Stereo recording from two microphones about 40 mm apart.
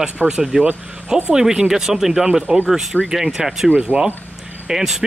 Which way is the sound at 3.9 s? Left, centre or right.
Right.